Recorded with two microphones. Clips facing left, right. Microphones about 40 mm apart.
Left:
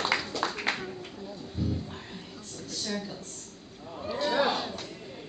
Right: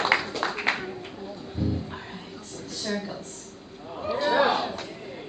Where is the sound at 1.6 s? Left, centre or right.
Centre.